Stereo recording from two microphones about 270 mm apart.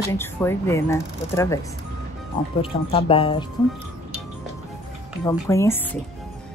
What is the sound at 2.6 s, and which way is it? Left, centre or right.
Speech, centre.